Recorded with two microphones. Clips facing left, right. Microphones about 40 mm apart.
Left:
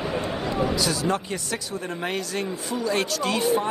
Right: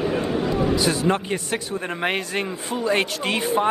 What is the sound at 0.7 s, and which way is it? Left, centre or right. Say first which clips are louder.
Speech: right 4 dB; right.